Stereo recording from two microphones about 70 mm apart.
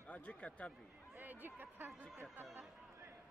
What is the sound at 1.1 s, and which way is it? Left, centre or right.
Speech, right.